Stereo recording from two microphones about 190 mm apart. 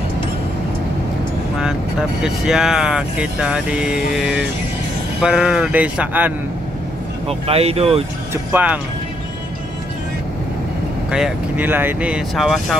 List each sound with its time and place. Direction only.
1.6 s speech: 5° right (ahead or behind)
7.2 s speech: 30° right (ahead or behind)
8.3 s speech: 10° right (ahead or behind)
11.1 s speech: 5° right (ahead or behind)